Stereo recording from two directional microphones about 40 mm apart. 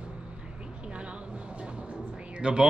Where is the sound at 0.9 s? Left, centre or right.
Right.